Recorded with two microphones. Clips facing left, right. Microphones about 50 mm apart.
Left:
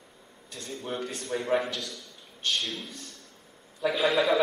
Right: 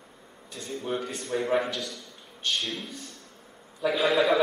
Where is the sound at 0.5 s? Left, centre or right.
Centre.